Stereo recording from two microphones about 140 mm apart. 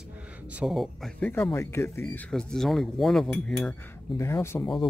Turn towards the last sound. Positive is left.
turn(degrees=20)  # may be behind; listen again after turning